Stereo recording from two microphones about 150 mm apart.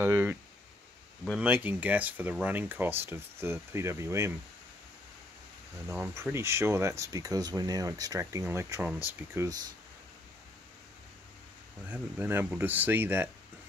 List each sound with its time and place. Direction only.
0.0 s speech: 15° right (ahead or behind)
1.4 s speech: 10° right (ahead or behind)
5.9 s speech: 15° right (ahead or behind)
11.9 s speech: 10° right (ahead or behind)